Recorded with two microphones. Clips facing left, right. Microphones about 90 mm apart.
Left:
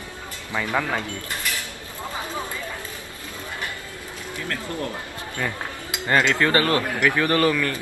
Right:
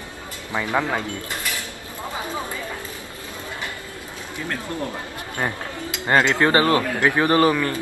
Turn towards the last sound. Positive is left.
turn(degrees=-25)  # may be behind; listen again after turning